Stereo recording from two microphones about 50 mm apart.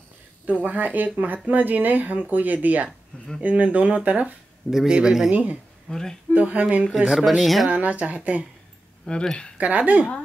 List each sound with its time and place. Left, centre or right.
0.5 s speech: right
4.6 s speech: centre
5.3 s speech: right
5.9 s speech: centre
6.3 s speech: right
6.9 s speech: centre
7.7 s speech: right
9.0 s speech: centre
9.6 s speech: right